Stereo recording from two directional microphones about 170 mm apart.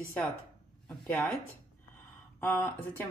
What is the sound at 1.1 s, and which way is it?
Speech, 15° left (ahead or behind).